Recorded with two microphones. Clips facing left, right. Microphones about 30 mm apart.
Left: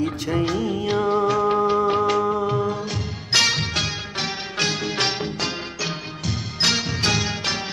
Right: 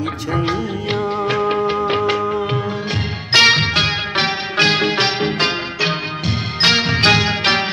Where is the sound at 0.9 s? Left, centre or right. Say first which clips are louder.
Right 1 dB; right.